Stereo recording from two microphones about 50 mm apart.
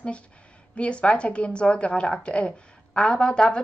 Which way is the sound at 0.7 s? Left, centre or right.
Left.